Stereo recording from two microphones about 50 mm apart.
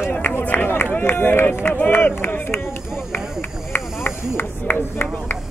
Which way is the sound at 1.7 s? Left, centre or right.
Left.